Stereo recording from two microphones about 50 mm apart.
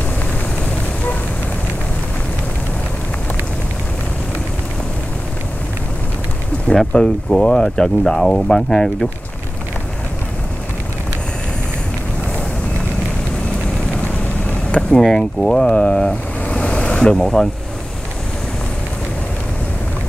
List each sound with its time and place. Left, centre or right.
6.7 s speech: centre
15.0 s speech: centre